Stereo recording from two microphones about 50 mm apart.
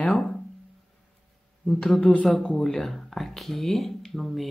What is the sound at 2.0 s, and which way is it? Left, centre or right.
Speech, left.